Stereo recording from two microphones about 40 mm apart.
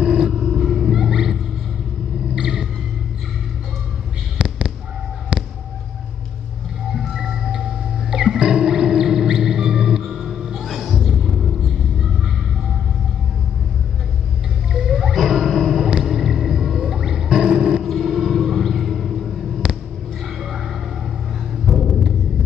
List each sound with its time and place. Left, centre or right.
0.0 s roar: centre
2.3 s rumble: centre
4.4 s fireworks: right
5.3 s a sound: right
6.9 s music: centre
10.6 s music: centre
14.7 s music: centre
17.8 s vehicle: centre
18.1 s a sound: centre
21.6 s a sound: centre